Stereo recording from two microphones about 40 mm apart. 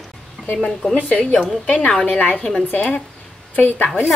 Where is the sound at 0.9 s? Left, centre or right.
Left.